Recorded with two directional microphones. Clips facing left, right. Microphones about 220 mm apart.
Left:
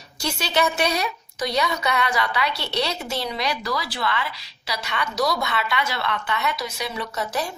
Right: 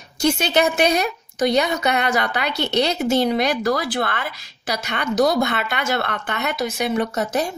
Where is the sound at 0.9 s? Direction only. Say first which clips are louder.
Right 5 dB; 50° right (ahead or behind).